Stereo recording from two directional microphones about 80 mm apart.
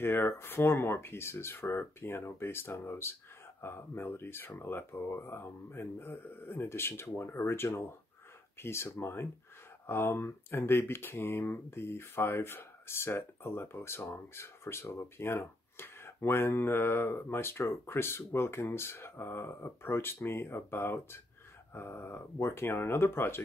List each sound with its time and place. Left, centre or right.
0.0 s speech: left